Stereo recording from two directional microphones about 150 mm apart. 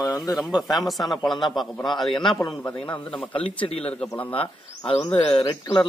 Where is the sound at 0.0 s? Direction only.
25° left (ahead or behind).